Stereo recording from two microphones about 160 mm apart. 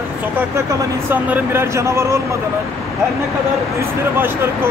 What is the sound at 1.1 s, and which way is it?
A man's voice, 10° right (ahead or behind).